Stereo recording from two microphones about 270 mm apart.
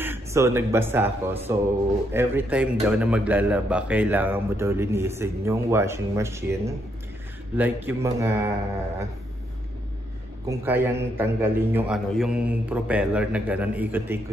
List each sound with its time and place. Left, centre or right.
0.0 s a man's voice: centre
10.4 s a man's voice: centre